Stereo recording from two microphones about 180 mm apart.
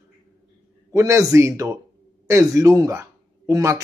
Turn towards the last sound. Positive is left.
turn(degrees=-15)  # may be behind; listen again after turning